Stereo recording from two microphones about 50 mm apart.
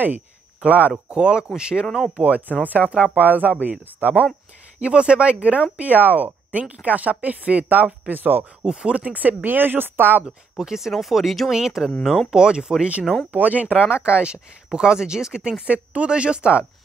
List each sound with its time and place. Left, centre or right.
0.7 s speech: right
1.1 s speech: centre
2.1 s speech: right
8.1 s speech: right
8.6 s speech: centre; by 10.2 s right
10.2 s speech: centre
12.4 s speech: centre
13.3 s speech: right; by 15.5 s centre
15.6 s speech: right